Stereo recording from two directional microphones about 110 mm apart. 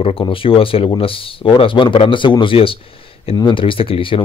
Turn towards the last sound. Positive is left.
turn(degrees=55)  # may be behind; listen again after turning